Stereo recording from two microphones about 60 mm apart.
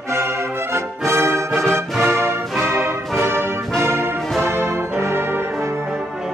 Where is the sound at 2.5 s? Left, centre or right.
Centre.